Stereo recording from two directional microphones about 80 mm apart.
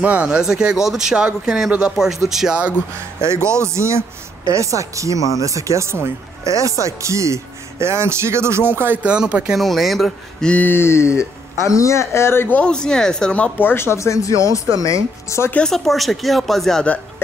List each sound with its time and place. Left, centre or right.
0.0 s speech: centre
3.2 s a woman's voice: right
9.0 s speech: centre
9.6 s speech: centre
10.5 s speech: left
12.5 s speech: centre; by 15.5 s left
15.5 s speech: centre